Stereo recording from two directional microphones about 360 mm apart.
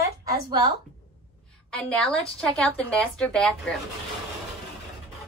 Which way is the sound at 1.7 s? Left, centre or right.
Centre.